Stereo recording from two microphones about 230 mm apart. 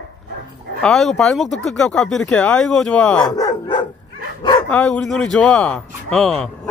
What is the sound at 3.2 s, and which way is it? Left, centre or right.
Dog, centre.